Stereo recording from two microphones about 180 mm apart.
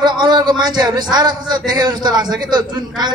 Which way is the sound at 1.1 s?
25° right (ahead or behind).